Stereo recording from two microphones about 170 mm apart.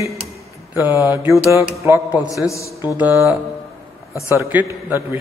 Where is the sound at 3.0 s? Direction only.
15° right (ahead or behind).